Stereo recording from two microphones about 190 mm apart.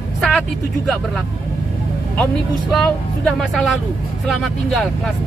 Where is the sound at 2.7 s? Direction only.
Centre (ahead or behind).